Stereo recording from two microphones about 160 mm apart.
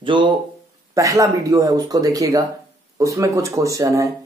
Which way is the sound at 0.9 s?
20° right (ahead or behind).